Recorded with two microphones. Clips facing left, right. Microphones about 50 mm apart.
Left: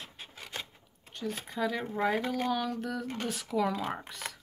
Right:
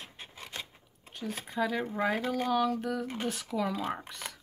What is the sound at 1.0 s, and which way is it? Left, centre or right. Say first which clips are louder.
Speech: left 1 dB; centre.